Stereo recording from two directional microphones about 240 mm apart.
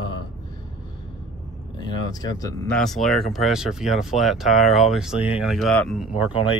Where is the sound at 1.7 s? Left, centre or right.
Centre.